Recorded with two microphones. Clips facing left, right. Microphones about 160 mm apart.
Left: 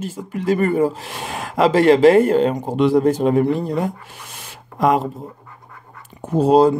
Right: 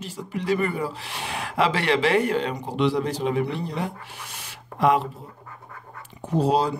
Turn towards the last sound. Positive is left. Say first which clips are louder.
# left 8 dB
turn(degrees=50)  # may be behind; listen again after turning